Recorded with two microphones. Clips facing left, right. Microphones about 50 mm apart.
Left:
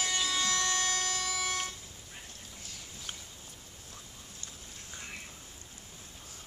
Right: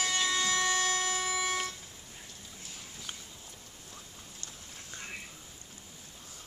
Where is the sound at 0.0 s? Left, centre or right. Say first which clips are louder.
Right 2 dB; centre.